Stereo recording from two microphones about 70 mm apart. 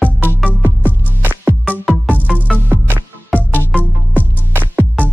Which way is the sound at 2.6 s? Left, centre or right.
Right.